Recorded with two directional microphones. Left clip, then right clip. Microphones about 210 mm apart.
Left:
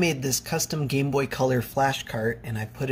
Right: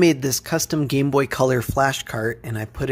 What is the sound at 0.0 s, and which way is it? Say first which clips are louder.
Speech: right 7 dB; 40° right (ahead or behind).